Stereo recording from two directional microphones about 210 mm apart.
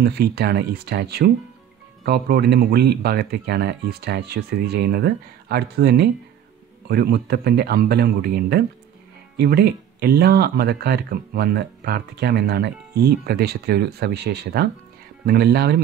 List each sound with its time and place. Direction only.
0.0 s speech: 50° right (ahead or behind)